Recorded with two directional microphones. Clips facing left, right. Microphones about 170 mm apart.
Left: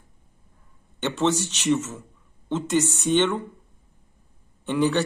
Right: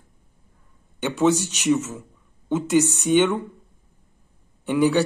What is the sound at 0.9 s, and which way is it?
Speech, 10° right (ahead or behind).